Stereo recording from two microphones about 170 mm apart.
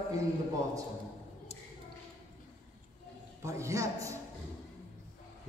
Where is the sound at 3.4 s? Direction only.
15° right (ahead or behind).